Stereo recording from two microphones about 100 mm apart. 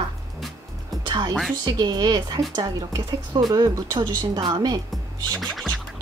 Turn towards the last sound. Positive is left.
turn(degrees=5)  # may be behind; listen again after turning